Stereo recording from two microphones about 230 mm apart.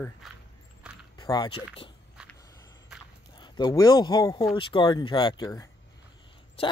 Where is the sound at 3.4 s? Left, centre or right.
Centre.